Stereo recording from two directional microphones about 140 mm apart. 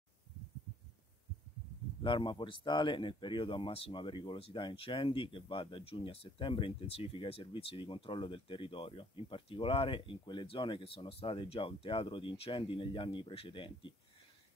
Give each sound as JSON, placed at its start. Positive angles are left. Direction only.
{"t": 2.0, "sound": "speech", "side_deg": 35}